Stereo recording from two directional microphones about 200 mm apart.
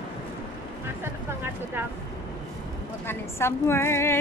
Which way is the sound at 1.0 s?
10° right (ahead or behind).